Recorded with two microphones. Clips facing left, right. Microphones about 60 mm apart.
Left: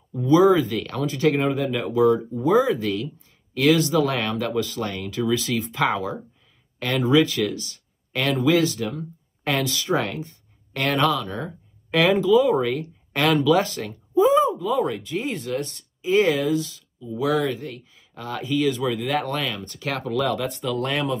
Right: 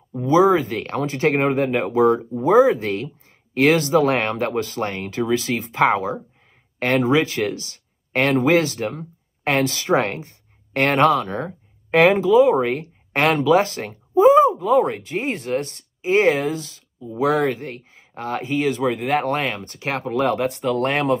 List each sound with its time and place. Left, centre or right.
0.1 s speech: right
20.7 s speech: right